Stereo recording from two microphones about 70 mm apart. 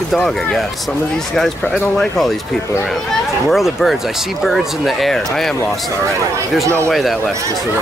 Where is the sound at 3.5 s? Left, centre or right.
Centre.